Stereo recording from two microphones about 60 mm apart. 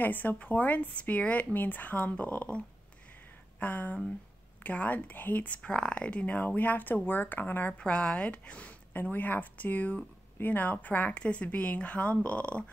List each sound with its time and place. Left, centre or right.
0.0 s speech: left
7.8 s speech: centre